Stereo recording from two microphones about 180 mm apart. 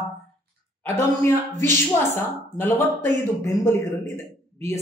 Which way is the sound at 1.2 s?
15° left (ahead or behind).